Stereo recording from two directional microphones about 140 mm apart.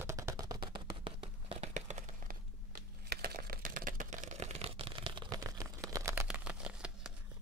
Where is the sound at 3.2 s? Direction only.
90° right; by 5.4 s 35° right (ahead or behind).